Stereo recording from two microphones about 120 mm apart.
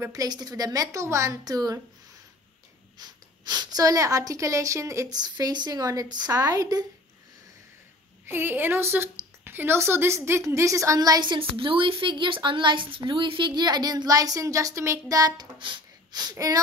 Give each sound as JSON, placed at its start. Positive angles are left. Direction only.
{"t": 0.0, "sound": "a woman's voice", "side_deg": -30}
{"t": 3.0, "sound": "speech", "side_deg": -35}
{"t": 5.2, "sound": "a woman's voice", "side_deg": -35}
{"t": 8.3, "sound": "speech", "side_deg": -20}